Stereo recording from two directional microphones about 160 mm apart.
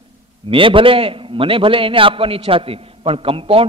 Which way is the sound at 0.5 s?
35° right (ahead or behind).